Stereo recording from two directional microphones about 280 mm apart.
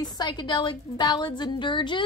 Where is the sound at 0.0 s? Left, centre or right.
Centre.